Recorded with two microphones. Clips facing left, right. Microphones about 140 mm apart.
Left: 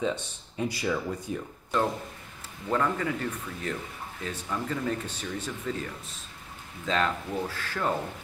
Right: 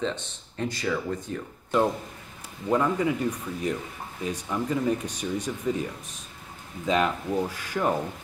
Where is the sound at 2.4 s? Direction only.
15° right (ahead or behind).